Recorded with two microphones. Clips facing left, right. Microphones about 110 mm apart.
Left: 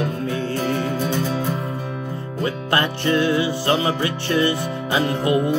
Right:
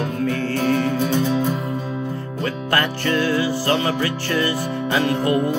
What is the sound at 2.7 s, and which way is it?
Music, 20° left (ahead or behind).